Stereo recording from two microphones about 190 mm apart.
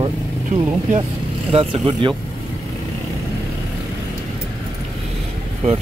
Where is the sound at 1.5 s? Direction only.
30° right (ahead or behind).